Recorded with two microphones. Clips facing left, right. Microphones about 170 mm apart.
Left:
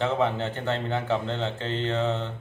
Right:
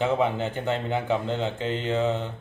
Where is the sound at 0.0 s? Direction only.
10° right (ahead or behind).